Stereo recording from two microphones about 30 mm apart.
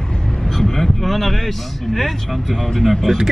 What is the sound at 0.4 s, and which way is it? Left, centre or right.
Speech, centre.